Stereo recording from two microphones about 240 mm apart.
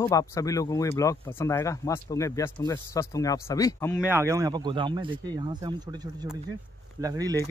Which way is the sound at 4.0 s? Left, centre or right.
Centre.